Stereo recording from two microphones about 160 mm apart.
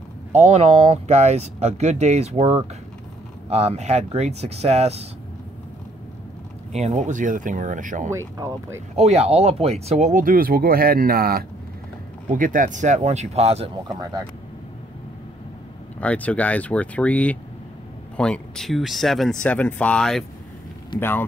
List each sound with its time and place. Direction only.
0.3 s speech: 45° right (ahead or behind)
6.7 s speech: 45° right (ahead or behind)
8.1 s speech: 20° right (ahead or behind)
8.9 s speech: 40° right (ahead or behind); by 11.4 s 70° right (ahead or behind)
12.3 s speech: 55° right (ahead or behind); by 13.7 s 40° right (ahead or behind)
16.0 s speech: 10° left (ahead or behind)